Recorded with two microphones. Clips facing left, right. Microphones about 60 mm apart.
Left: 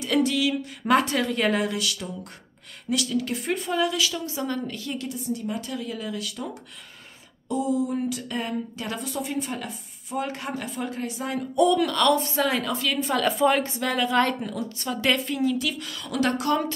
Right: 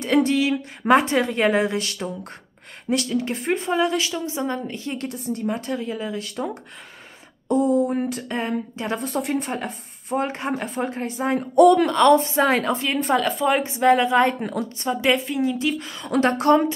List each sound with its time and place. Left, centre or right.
0.0 s a woman's voice: right
1.8 s speech: right
4.9 s speech: right
9.1 s speech: right
9.6 s speech: right
11.5 s speech: right
11.8 s speech: right
13.2 s a woman's voice: centre
13.6 s a woman's voice: right
14.4 s speech: right
14.9 s a woman's voice: right
15.5 s a woman's voice: right